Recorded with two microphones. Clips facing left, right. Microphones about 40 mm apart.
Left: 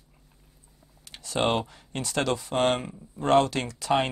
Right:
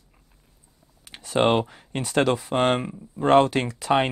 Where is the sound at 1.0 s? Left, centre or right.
Right.